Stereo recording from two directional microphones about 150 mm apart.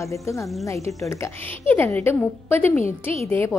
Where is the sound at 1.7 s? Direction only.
10° left (ahead or behind).